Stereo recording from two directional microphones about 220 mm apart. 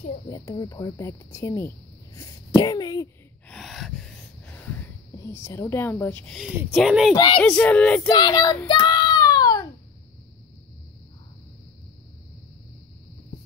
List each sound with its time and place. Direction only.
0.3 s speech: 15° left (ahead or behind)
3.4 s gasp: centre (ahead or behind)
6.7 s speech: centre (ahead or behind)
7.2 s speech: 20° left (ahead or behind)
7.4 s speech: 5° left (ahead or behind)
8.1 s speech: 20° left (ahead or behind)
8.6 s a sound: 20° left (ahead or behind)